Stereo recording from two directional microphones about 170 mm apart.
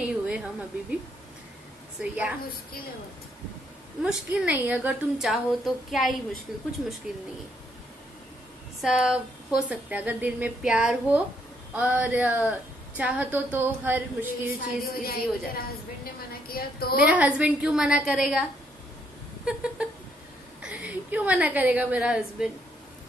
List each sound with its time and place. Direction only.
0.0 s a sound: 5° right (ahead or behind)
2.0 s a woman's voice: 5° right (ahead or behind)
4.0 s a woman's voice: 5° right (ahead or behind)
8.8 s a woman's voice: 5° right (ahead or behind)
14.6 s a woman's voice: 65° left (ahead or behind)
17.0 s a woman's voice: 10° right (ahead or behind)
19.4 s a woman's voice: 5° right (ahead or behind)